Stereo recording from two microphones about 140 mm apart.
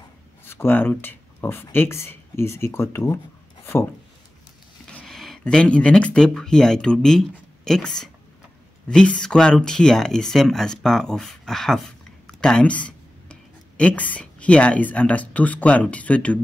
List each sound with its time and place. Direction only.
0.5 s speech: 15° left (ahead or behind)
4.9 s speech: 5° left (ahead or behind)